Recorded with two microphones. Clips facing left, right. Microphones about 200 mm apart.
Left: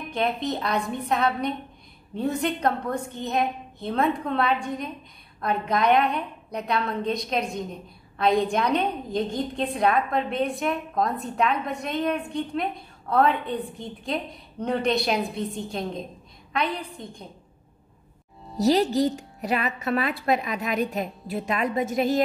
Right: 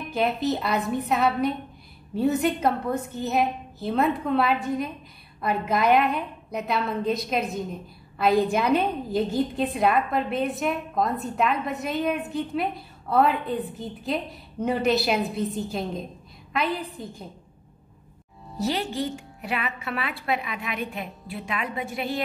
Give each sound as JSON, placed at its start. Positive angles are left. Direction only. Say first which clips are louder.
{"t": 0.1, "sound": "a woman's voice", "louder": "right 2 dB", "side_deg": -5}
{"t": 18.6, "sound": "a woman's voice", "louder": "left 7 dB", "side_deg": 40}